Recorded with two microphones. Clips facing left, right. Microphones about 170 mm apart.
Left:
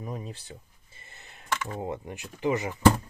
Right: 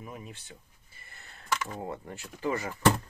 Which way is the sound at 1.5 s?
Centre (ahead or behind).